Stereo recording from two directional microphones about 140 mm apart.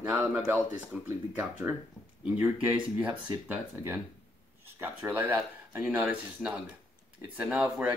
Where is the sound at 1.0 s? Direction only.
15° right (ahead or behind).